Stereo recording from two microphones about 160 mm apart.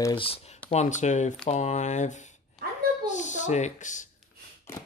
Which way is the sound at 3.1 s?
50° left (ahead or behind).